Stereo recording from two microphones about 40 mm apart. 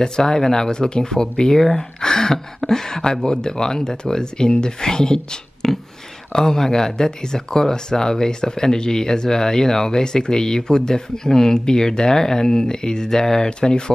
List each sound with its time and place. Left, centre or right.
0.0 s speech: centre